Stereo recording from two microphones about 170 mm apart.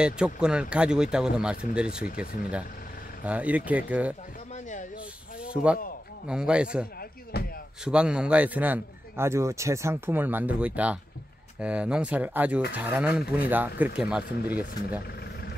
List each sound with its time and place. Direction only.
0.0 s speech: 5° right (ahead or behind)
3.3 s a man's voice: 10° right (ahead or behind)
5.5 s speech: 5° right (ahead or behind)
7.3 s music: 70° left (ahead or behind)
7.8 s a man's voice: 5° right (ahead or behind)